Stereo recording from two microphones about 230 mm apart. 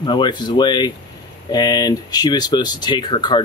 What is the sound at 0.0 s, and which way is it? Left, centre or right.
Speech, centre.